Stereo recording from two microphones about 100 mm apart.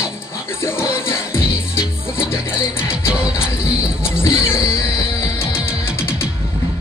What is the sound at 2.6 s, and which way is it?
Music, 25° left (ahead or behind).